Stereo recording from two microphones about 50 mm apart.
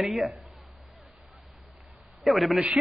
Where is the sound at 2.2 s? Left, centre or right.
Centre.